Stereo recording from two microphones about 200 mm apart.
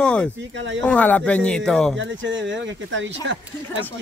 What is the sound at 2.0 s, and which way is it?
Speech, 65° right (ahead or behind).